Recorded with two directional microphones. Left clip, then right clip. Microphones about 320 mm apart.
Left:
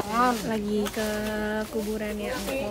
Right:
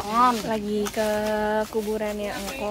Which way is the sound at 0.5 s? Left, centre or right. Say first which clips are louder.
Right 2 dB; centre.